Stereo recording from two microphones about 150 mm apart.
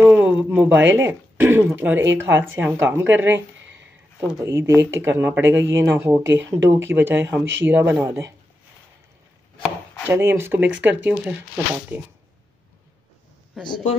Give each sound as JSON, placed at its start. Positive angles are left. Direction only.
{"t": 0.0, "sound": "speech", "side_deg": -10}
{"t": 4.4, "sound": "speech", "side_deg": -15}
{"t": 10.0, "sound": "speech", "side_deg": -15}
{"t": 13.5, "sound": "speech", "side_deg": 0}